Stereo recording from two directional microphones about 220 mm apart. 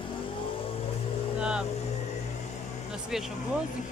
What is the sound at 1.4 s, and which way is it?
Speech, 5° right (ahead or behind).